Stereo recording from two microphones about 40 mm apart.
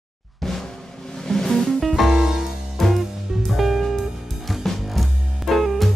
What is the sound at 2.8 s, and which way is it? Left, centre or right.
Music, centre.